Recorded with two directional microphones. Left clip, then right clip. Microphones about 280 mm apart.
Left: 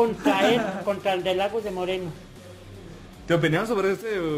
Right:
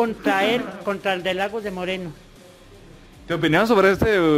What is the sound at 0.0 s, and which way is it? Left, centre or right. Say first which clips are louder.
A man's voice: right 1 dB; right.